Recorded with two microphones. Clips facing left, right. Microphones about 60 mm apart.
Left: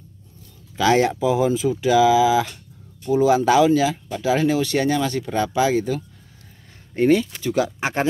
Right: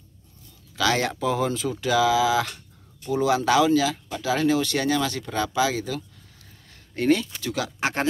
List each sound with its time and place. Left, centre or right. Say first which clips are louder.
0.7 s speech: left 6 dB; left